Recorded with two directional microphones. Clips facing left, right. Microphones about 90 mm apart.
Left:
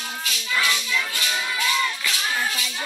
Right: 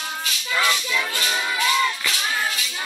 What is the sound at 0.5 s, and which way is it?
Music, 35° right (ahead or behind).